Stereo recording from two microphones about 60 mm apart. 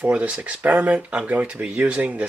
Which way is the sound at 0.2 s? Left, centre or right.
Right.